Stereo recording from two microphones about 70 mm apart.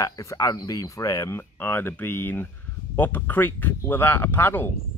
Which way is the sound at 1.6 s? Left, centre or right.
Left.